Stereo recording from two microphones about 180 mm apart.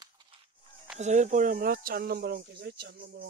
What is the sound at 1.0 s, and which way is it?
Speech, 40° right (ahead or behind).